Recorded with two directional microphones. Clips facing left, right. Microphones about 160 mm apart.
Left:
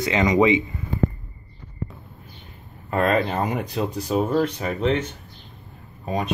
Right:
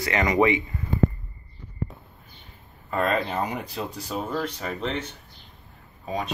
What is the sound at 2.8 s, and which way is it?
Speech, 60° left (ahead or behind).